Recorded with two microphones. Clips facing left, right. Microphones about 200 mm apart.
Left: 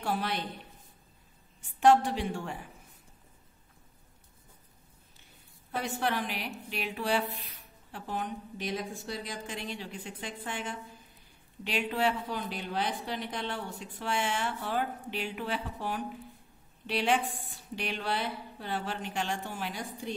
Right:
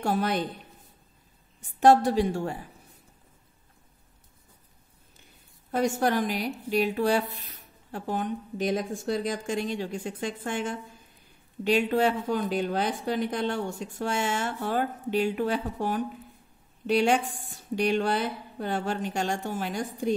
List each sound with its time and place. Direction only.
0.0 s a woman's voice: 45° right (ahead or behind)
1.6 s a woman's voice: 40° right (ahead or behind)
5.7 s a woman's voice: 45° right (ahead or behind)